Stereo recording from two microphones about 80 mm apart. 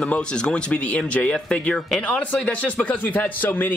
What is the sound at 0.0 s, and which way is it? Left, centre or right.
Speech, centre.